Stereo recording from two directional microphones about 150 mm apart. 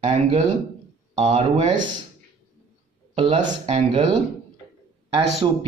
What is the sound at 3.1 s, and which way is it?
Speech, 35° right (ahead or behind).